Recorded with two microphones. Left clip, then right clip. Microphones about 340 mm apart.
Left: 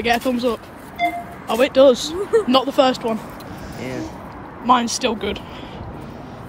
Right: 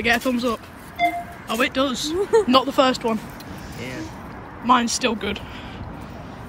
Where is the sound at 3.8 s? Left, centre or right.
Centre.